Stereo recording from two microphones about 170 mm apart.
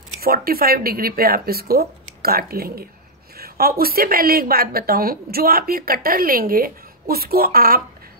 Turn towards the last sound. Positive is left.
turn(degrees=-60)  # may be behind; listen again after turning